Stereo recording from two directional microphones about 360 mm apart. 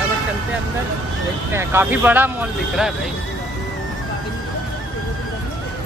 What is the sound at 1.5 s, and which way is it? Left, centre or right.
Speech, centre.